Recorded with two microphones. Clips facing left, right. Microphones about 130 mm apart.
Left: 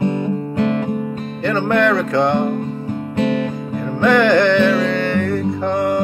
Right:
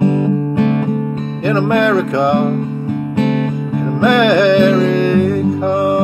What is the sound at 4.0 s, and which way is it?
Music, 20° right (ahead or behind).